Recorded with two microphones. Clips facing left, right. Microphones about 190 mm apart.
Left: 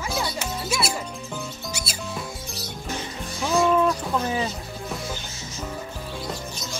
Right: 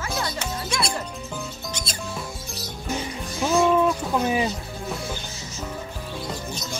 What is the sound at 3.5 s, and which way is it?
Bird, 5° right (ahead or behind).